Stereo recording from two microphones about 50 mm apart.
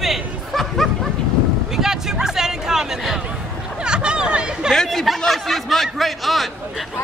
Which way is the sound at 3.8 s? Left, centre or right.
Centre.